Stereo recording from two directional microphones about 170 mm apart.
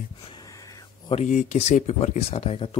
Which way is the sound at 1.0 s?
40° left (ahead or behind).